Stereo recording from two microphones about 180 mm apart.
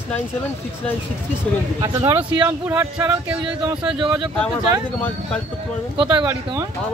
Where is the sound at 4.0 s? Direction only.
25° right (ahead or behind).